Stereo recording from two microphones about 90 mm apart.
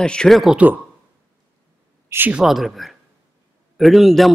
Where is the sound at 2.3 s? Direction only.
5° right (ahead or behind).